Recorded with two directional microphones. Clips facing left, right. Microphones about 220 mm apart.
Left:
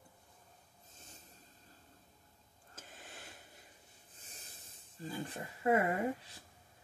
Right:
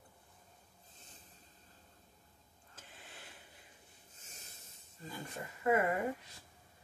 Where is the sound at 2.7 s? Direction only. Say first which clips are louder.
Left 3 dB; 45° left (ahead or behind).